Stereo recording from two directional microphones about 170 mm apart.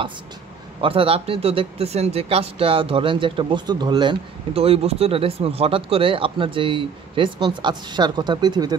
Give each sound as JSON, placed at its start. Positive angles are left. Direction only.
{"t": 0.7, "sound": "a man's voice", "side_deg": -30}